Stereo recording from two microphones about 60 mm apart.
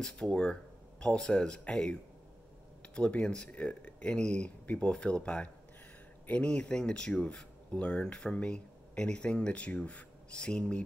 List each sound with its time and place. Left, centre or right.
0.0 s speech: centre